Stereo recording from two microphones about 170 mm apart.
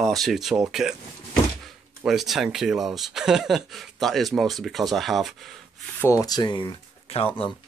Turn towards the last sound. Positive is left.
turn(degrees=30)  # may be behind; listen again after turning